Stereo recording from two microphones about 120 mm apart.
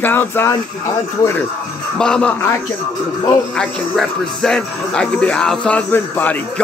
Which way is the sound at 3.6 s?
5° left (ahead or behind).